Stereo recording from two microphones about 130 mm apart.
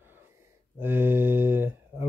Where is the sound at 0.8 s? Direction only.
15° right (ahead or behind).